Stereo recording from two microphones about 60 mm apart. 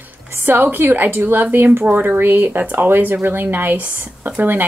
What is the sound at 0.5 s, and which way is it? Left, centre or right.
A woman's voice, right.